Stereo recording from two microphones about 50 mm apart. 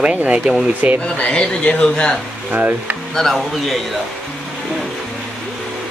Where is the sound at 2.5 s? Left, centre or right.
Right.